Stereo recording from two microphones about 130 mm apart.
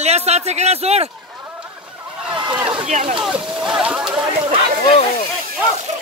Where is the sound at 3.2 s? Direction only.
5° right (ahead or behind).